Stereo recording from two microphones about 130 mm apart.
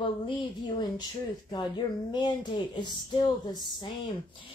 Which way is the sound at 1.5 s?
35° left (ahead or behind).